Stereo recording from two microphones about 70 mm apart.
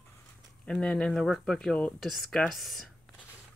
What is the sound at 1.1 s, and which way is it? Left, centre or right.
Speech, centre.